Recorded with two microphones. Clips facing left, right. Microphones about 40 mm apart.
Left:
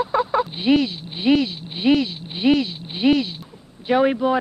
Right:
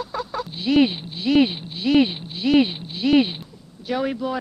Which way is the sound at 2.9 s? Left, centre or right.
Left.